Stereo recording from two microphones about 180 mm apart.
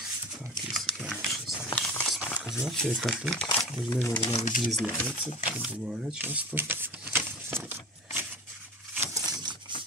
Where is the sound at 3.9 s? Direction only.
20° left (ahead or behind).